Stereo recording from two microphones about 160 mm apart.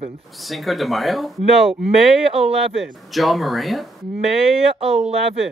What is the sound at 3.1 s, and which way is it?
Speech, centre (ahead or behind).